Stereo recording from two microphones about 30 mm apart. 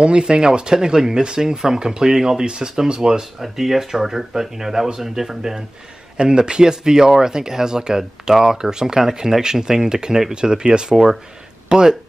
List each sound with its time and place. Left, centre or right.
0.0 s speech: right
3.5 s speech: centre
6.1 s speech: right